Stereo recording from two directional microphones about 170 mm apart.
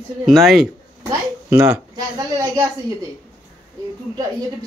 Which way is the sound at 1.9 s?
20° right (ahead or behind).